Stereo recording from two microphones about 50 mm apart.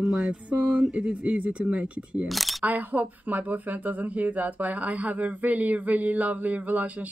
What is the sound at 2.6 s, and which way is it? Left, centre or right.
Speech, right.